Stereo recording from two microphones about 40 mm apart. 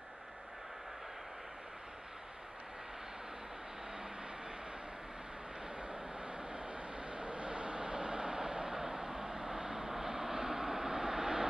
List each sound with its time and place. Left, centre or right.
5.8 s vehicle: right